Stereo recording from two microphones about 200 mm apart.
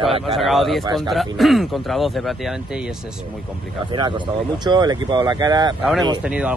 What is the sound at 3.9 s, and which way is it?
Speech, 20° right (ahead or behind).